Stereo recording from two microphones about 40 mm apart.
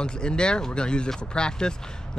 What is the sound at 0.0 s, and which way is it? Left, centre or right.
Speech, left.